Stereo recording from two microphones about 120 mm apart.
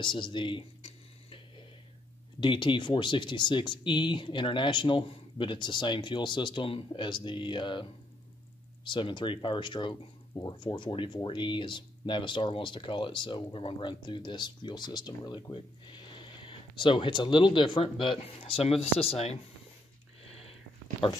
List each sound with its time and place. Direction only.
0.0 s tick-tock: 40° left (ahead or behind)
2.4 s speech: 40° left (ahead or behind)
21.0 s speech: 45° left (ahead or behind)